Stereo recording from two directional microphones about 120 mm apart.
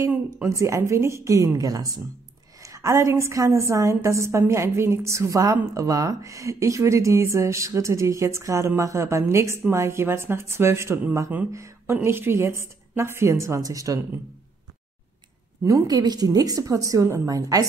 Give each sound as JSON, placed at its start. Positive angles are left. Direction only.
{"t": 0.5, "sound": "speech", "side_deg": -25}
{"t": 15.6, "sound": "speech", "side_deg": -35}